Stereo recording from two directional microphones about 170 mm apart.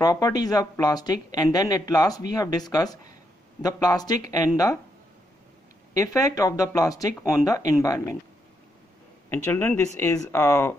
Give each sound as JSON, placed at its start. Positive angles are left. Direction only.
{"t": 0.0, "sound": "speech", "side_deg": 20}
{"t": 5.9, "sound": "speech", "side_deg": 20}
{"t": 9.3, "sound": "speech", "side_deg": 15}